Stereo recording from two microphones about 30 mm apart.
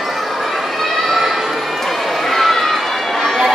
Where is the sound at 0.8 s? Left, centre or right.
Centre.